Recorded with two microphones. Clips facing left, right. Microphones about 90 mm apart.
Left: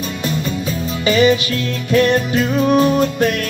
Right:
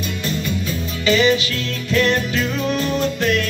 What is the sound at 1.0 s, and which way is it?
Music, 45° left (ahead or behind).